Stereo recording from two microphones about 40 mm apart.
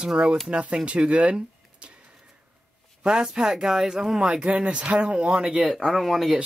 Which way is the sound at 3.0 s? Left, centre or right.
Centre.